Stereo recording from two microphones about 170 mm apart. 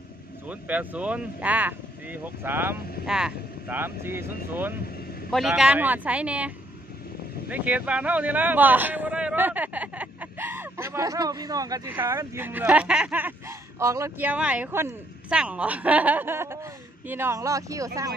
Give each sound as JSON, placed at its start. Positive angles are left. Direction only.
{"t": 0.5, "sound": "speech", "side_deg": -10}